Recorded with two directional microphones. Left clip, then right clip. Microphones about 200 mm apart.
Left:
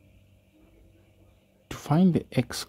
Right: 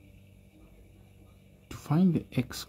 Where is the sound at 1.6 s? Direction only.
20° left (ahead or behind).